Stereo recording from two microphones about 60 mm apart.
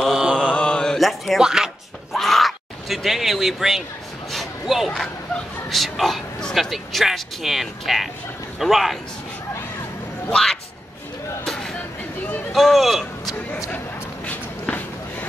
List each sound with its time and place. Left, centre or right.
0.1 s mantra: centre
0.4 s mantra: centre
0.9 s speech: centre
1.4 s speech: centre
2.1 s a sound: centre
5.7 s speech: centre
10.3 s speech: centre
11.4 s music: centre
12.5 s a man's voice: centre
14.2 s walk: left